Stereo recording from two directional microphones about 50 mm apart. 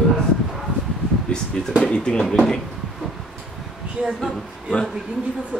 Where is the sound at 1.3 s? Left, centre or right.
Centre.